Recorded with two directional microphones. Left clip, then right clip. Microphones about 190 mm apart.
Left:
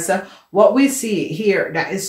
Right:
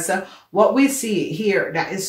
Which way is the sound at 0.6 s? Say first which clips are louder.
Left 3 dB; 30° left (ahead or behind).